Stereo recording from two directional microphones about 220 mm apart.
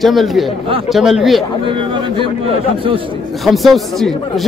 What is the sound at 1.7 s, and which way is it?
Speech, 25° right (ahead or behind).